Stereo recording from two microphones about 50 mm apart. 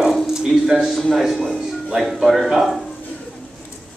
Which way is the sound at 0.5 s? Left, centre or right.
Centre.